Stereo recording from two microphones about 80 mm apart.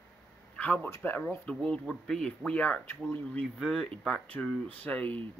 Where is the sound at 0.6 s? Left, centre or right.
Left.